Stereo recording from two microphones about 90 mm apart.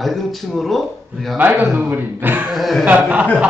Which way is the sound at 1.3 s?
20° right (ahead or behind).